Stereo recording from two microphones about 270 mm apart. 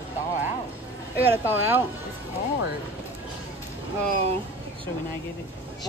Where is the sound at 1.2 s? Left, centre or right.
Centre.